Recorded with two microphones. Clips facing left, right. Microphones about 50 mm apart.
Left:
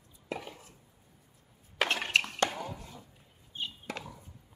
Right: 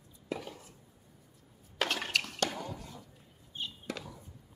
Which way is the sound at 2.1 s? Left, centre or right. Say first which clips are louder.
Left 4 dB; left.